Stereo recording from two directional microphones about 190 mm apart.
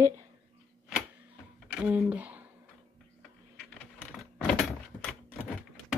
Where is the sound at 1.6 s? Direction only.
5° right (ahead or behind).